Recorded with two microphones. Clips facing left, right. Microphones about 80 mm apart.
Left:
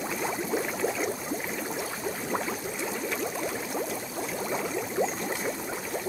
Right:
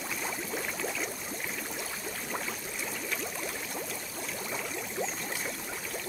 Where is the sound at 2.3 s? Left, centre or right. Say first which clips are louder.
Left 5 dB; left.